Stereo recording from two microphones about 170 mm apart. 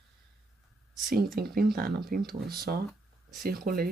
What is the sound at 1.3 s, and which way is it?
Speech, 65° right (ahead or behind).